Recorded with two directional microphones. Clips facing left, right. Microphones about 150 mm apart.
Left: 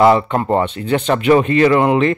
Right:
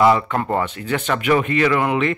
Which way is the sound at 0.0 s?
30° left (ahead or behind).